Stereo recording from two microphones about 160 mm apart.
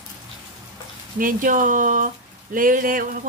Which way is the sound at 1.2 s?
60° right (ahead or behind).